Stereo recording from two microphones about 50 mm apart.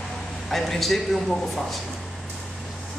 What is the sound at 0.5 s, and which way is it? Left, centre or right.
A man's voice, centre.